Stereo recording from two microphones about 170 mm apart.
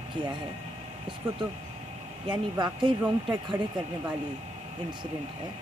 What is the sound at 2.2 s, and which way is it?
Speech, 25° right (ahead or behind).